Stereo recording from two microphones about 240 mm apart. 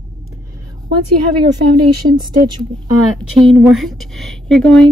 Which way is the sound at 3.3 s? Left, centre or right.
Centre.